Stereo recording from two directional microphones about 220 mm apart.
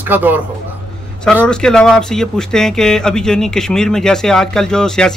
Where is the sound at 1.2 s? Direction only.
5° left (ahead or behind).